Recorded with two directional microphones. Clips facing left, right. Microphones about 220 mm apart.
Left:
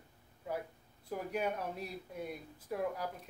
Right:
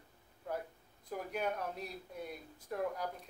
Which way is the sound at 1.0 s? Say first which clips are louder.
Left 2 dB; 5° left (ahead or behind).